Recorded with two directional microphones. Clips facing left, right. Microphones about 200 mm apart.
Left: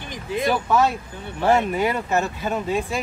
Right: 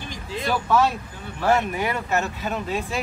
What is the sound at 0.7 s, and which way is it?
Speech, 15° left (ahead or behind).